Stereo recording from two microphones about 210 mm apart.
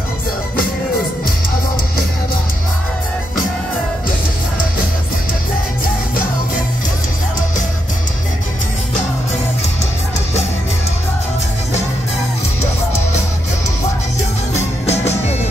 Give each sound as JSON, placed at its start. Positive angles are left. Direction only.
{"t": 14.5, "sound": "music", "side_deg": 30}